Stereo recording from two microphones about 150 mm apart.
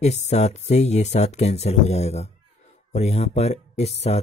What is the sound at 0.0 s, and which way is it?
Speech, 45° left (ahead or behind).